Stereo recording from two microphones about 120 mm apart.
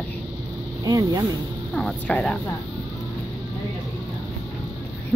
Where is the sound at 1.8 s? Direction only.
5° left (ahead or behind).